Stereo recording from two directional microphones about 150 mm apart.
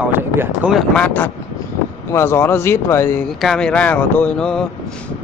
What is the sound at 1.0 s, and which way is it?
Speech, 10° left (ahead or behind).